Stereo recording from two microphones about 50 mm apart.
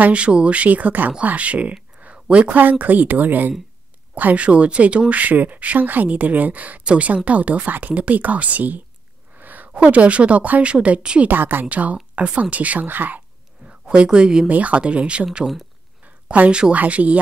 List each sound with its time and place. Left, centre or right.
0.0 s speech: right
9.4 s a sound: right
9.7 s speech: right
11.2 s speech: right
13.7 s speech: right
14.5 s speech: right
16.3 s speech: right